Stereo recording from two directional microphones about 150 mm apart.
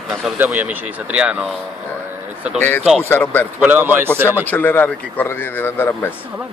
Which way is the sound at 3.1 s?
10° left (ahead or behind).